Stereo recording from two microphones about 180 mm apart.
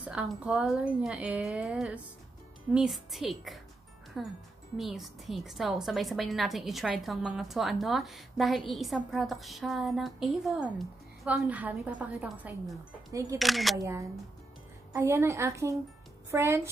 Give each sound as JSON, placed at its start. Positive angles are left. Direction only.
{"t": 0.0, "sound": "a woman's voice", "side_deg": -5}
{"t": 13.4, "sound": "a woman's voice", "side_deg": 0}
{"t": 13.7, "sound": "a woman's voice", "side_deg": -15}